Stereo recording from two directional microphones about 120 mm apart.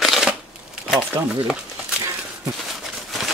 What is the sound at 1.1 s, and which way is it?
Speech, 30° right (ahead or behind).